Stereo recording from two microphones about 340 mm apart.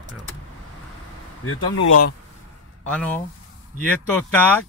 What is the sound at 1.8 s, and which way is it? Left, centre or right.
Speech, left.